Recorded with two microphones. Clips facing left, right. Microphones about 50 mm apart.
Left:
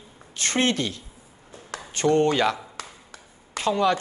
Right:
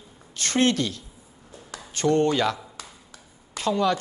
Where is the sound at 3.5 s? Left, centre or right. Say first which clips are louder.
Left 1 dB; left.